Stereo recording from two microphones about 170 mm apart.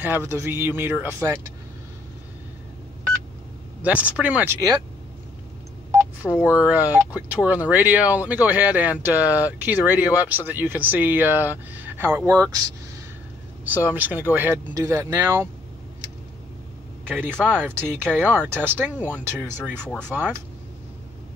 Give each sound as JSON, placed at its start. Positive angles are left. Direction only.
{"t": 0.0, "sound": "speech", "side_deg": -15}
{"t": 3.8, "sound": "speech", "side_deg": -10}
{"t": 5.9, "sound": "telephone dialing", "side_deg": -15}
{"t": 6.6, "sound": "speech", "side_deg": -10}
{"t": 13.7, "sound": "speech", "side_deg": -10}
{"t": 17.1, "sound": "speech", "side_deg": -10}
{"t": 19.9, "sound": "speech", "side_deg": 5}